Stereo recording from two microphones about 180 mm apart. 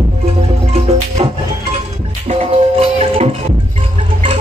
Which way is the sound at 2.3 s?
35° right (ahead or behind).